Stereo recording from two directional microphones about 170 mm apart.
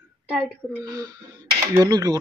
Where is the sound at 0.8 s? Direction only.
20° right (ahead or behind).